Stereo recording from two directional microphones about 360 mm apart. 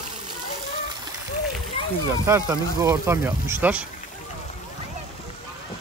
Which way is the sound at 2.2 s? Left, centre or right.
Centre.